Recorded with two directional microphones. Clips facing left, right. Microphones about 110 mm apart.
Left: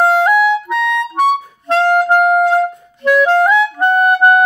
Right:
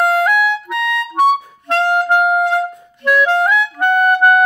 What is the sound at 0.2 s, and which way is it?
Clarinet, 30° left (ahead or behind).